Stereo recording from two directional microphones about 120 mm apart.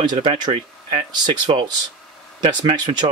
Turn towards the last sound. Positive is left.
turn(degrees=-40)  # may be behind; listen again after turning